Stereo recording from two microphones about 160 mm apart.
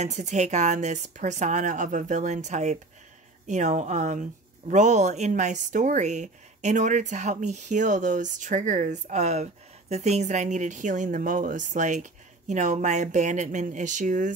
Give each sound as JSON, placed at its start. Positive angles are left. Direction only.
{"t": 0.0, "sound": "speech", "side_deg": -45}